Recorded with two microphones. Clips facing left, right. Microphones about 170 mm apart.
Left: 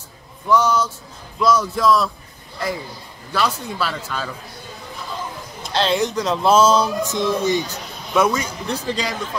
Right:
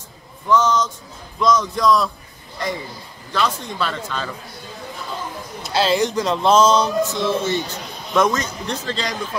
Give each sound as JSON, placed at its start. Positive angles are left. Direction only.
{"t": 0.5, "sound": "speech", "side_deg": 10}
{"t": 5.6, "sound": "speech", "side_deg": -5}
{"t": 7.1, "sound": "speech", "side_deg": 15}